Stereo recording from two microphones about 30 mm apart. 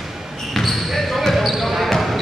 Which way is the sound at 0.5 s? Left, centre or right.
Centre.